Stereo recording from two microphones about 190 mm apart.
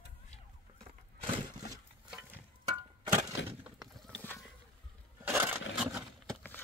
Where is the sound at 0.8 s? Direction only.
30° right (ahead or behind).